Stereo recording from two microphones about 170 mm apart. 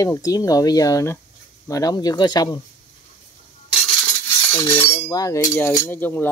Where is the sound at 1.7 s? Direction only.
20° left (ahead or behind).